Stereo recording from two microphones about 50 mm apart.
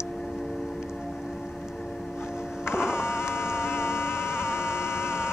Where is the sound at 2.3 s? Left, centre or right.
Centre.